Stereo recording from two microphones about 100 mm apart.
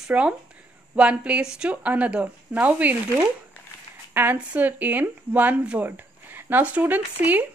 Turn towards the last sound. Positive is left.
turn(degrees=-15)  # may be behind; listen again after turning